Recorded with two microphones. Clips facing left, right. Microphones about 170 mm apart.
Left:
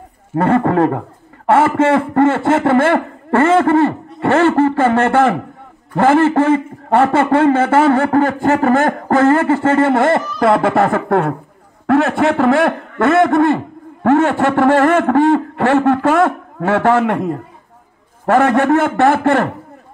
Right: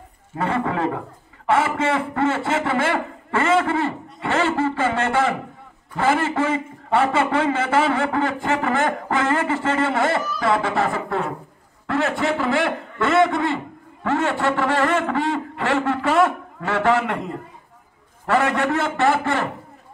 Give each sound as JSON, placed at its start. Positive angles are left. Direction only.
{"t": 0.4, "sound": "a man's voice", "side_deg": 50}